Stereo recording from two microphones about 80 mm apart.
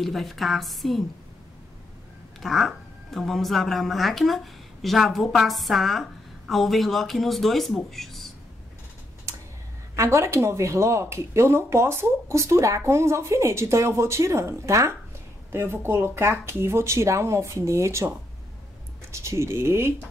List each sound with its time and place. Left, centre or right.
0.0 s speech: centre
2.4 s speech: centre
9.9 s speech: right
15.5 s speech: right
19.1 s speech: right